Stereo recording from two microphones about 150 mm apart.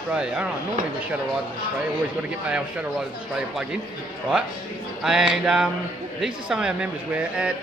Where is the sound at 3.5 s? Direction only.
5° right (ahead or behind).